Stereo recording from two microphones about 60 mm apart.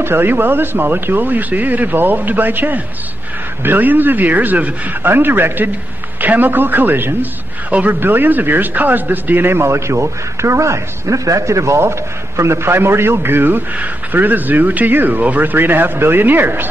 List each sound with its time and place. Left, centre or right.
0.0 s speech: right